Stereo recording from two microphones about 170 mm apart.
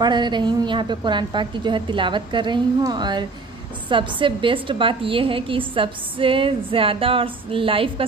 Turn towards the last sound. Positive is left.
turn(degrees=-30)  # may be behind; listen again after turning